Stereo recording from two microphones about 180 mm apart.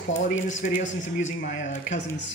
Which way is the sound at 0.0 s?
90° left.